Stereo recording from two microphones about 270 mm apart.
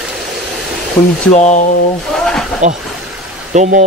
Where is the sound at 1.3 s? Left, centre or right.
Left.